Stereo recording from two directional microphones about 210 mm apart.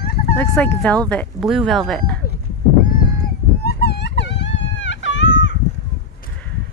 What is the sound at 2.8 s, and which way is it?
Cat, 40° left (ahead or behind).